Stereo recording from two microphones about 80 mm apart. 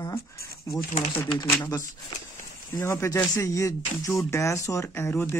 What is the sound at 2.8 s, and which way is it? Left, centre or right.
Speech, left.